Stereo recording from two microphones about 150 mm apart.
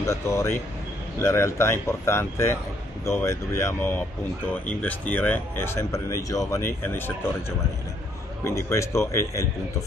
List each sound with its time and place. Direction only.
0.0 s a man's voice: 20° left (ahead or behind)
8.5 s a man's voice: 20° left (ahead or behind)